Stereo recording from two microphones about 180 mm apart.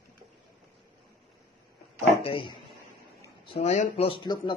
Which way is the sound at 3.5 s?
35° left (ahead or behind).